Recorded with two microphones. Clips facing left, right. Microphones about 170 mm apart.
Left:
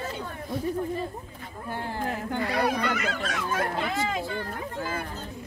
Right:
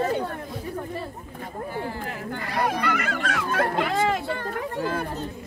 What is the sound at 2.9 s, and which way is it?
Speech, 60° right (ahead or behind).